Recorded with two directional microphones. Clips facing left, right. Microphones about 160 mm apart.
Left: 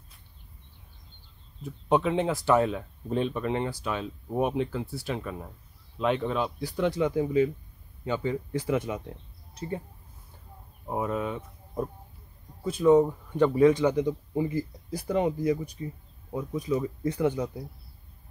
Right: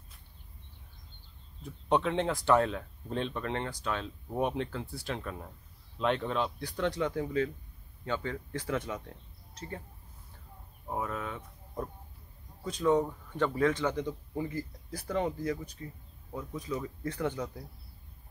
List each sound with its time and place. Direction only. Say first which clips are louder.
1.6 s speech: left 4 dB; 5° left (ahead or behind)
10.9 s speech: left 6 dB; 15° left (ahead or behind)